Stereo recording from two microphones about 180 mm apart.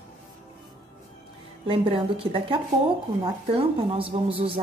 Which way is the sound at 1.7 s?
30° right (ahead or behind).